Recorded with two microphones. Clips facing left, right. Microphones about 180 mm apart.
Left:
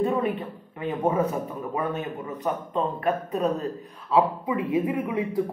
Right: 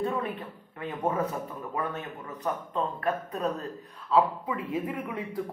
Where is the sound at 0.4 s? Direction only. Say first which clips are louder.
Left 5 dB; 20° left (ahead or behind).